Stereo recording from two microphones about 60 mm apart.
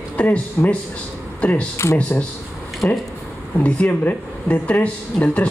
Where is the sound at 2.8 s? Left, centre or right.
Left.